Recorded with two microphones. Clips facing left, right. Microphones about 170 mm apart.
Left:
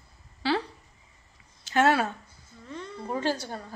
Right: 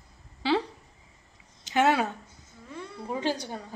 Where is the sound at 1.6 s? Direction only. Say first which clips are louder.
Left 1 dB; 15° right (ahead or behind).